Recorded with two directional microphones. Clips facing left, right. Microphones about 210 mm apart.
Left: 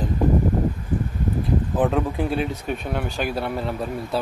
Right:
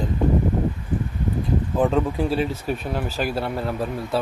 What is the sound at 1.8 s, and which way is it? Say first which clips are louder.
Speech: right 2 dB; 5° left (ahead or behind).